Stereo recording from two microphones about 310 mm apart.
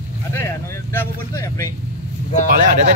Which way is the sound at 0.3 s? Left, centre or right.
Centre.